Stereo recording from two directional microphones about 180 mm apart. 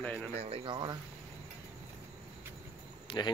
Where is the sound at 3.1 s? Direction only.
30° left (ahead or behind).